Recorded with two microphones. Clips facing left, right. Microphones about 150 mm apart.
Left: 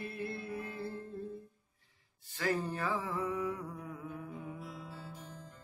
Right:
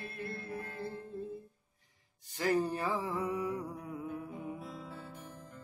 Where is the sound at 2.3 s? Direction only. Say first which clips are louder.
Right 3 dB; 15° right (ahead or behind).